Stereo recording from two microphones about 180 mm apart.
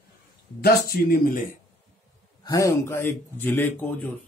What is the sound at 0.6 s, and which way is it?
Speech, 55° left (ahead or behind).